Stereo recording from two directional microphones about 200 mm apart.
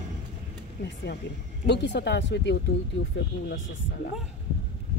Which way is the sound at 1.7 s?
60° left (ahead or behind).